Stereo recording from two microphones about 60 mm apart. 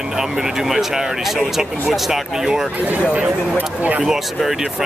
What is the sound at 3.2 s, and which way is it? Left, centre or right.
Speech, right.